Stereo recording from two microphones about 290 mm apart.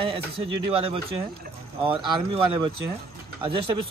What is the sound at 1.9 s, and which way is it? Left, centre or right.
A man's voice, centre.